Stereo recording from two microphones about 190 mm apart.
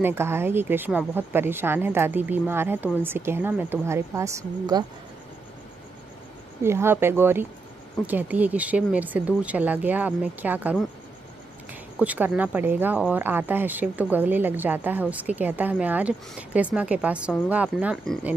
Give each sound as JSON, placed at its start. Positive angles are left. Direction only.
{"t": 0.0, "sound": "speech", "side_deg": -15}
{"t": 6.6, "sound": "speech", "side_deg": -15}
{"t": 12.0, "sound": "speech", "side_deg": -10}